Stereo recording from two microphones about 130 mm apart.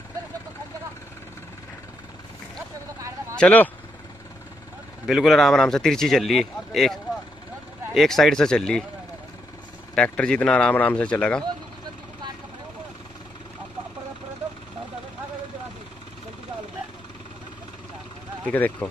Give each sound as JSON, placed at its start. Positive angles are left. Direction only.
{"t": 3.3, "sound": "speech", "side_deg": 10}
{"t": 5.0, "sound": "speech", "side_deg": 0}
{"t": 9.9, "sound": "speech", "side_deg": 10}
{"t": 18.4, "sound": "speech", "side_deg": 10}